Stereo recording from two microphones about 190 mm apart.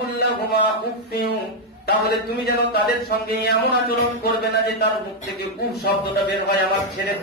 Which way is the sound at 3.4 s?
55° left (ahead or behind).